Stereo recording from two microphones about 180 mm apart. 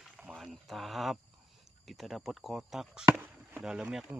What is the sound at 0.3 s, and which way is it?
Speech, centre (ahead or behind).